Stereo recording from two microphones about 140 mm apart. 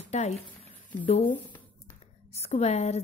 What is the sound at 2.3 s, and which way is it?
Speech, 50° left (ahead or behind).